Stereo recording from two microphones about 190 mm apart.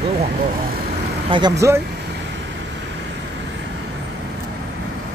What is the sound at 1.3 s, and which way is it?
Speech, 20° right (ahead or behind).